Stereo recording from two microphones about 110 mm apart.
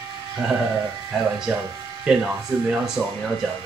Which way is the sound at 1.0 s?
5° right (ahead or behind).